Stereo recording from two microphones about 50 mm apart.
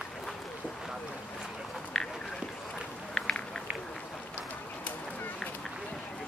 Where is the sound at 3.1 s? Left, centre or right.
Centre.